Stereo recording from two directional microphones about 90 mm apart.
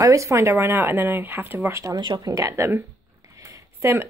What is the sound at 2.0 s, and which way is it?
Speech, 45° right (ahead or behind).